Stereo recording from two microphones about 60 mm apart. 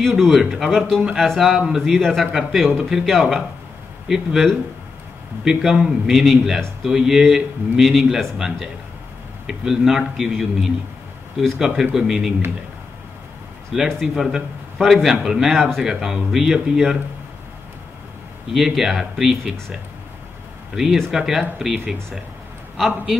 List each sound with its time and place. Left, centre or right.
0.0 s a man's voice: centre
13.7 s a man's voice: centre
18.5 s a man's voice: centre
20.7 s a man's voice: centre
21.6 s speech: centre
22.8 s a man's voice: centre